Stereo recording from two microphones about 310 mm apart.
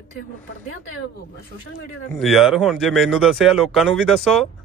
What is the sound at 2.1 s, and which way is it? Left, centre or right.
Speech, centre.